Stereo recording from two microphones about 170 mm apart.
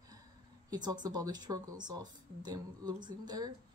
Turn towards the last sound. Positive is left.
turn(degrees=-25)  # may be behind; listen again after turning